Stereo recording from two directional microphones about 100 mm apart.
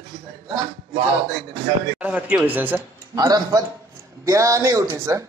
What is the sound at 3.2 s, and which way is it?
A man's voice, 35° right (ahead or behind).